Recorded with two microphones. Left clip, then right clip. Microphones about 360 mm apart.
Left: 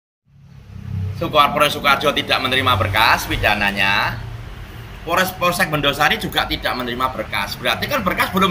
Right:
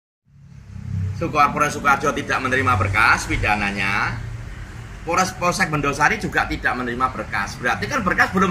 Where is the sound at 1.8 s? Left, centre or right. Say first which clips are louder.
Left 2 dB; centre.